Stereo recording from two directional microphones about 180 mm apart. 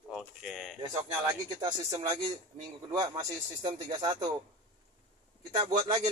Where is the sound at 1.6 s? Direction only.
25° right (ahead or behind).